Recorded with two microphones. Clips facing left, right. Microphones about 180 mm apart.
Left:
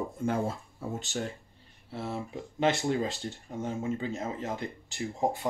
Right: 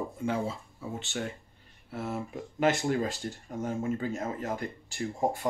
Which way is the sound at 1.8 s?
30° left (ahead or behind).